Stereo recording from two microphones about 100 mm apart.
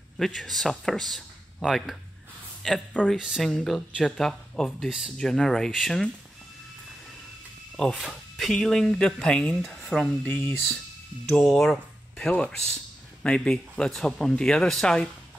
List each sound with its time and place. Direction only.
0.2 s speech: centre (ahead or behind)
3.4 s speech: 5° left (ahead or behind)
4.7 s speech: 5° right (ahead or behind)
7.7 s speech: 5° left (ahead or behind)
10.2 s speech: 20° left (ahead or behind)
11.2 s speech: 5° left (ahead or behind)